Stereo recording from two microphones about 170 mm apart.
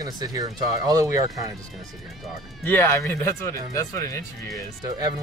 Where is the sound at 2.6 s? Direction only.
15° left (ahead or behind).